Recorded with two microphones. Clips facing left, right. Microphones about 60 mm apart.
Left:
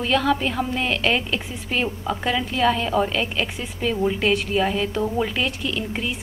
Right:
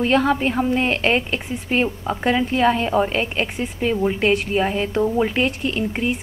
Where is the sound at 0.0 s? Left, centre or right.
Right.